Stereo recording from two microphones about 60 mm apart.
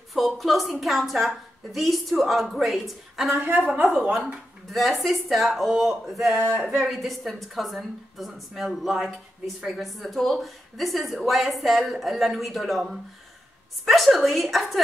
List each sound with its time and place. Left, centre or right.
0.1 s a woman's voice: centre
3.9 s speech: centre
4.3 s a woman's voice: centre